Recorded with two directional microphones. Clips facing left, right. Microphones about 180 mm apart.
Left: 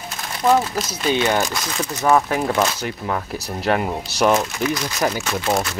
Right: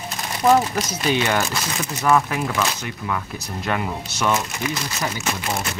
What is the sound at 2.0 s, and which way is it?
Speech, 25° left (ahead or behind).